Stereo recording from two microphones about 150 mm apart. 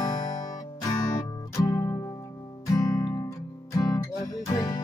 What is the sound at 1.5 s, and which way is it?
Music, 20° left (ahead or behind).